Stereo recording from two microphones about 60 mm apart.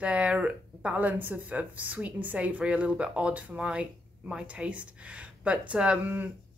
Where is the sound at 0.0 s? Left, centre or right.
Centre.